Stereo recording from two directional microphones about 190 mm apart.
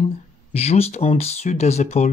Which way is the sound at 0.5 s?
35° left (ahead or behind).